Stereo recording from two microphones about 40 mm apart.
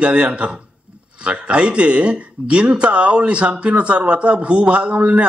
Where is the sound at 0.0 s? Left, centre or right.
Right.